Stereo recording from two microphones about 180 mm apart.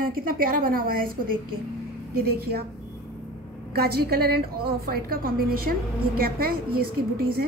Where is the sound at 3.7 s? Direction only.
60° right (ahead or behind).